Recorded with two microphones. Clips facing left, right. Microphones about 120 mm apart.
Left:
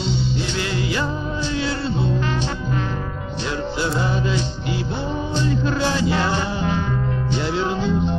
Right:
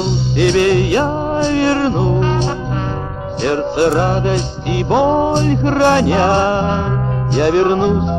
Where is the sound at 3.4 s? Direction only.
60° right (ahead or behind).